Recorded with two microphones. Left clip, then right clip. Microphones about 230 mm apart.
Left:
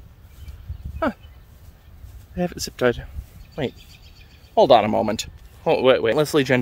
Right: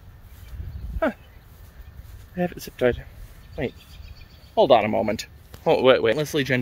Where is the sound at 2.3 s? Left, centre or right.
Centre.